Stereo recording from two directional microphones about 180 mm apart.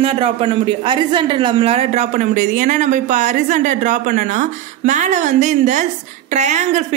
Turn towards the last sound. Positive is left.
turn(degrees=-40)  # may be behind; listen again after turning